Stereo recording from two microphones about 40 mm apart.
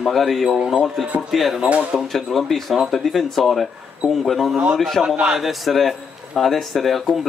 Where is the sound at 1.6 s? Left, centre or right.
Right.